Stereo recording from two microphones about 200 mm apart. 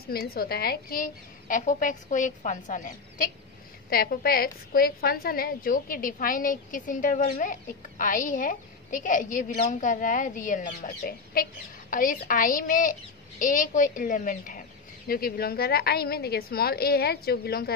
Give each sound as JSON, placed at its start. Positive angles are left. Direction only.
{"t": 0.1, "sound": "a woman's voice", "side_deg": 50}